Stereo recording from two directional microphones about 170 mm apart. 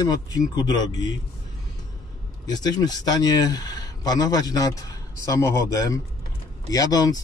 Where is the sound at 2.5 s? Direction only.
25° left (ahead or behind).